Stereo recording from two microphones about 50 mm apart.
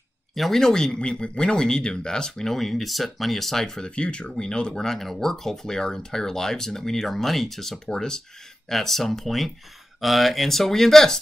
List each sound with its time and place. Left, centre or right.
0.3 s speech: centre
3.9 s speech: left